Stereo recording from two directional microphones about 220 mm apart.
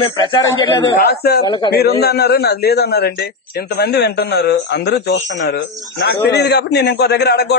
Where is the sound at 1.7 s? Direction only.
45° left (ahead or behind).